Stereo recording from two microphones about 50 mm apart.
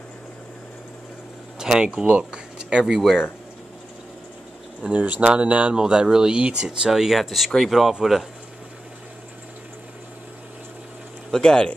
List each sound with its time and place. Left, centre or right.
1.6 s speech: centre
3.0 s speech: centre
4.8 s speech: right
5.8 s speech: centre
11.3 s speech: centre